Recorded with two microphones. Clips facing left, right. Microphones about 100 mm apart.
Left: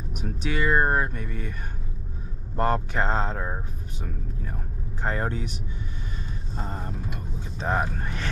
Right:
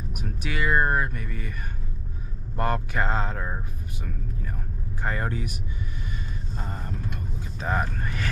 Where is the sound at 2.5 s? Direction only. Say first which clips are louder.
Left 2 dB; 30° left (ahead or behind).